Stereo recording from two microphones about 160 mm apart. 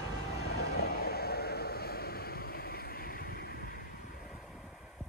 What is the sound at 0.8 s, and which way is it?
Vehicle, 75° left (ahead or behind).